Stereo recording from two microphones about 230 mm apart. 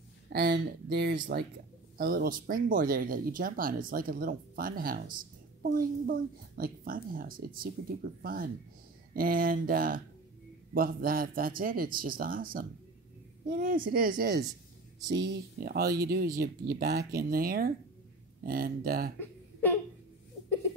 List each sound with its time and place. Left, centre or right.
0.3 s speech: right
13.8 s speech: right